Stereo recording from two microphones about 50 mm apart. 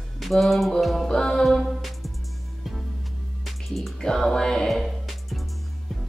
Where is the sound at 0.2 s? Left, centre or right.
Centre.